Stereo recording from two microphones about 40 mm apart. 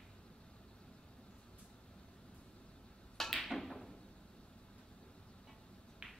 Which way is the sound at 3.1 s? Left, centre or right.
Centre.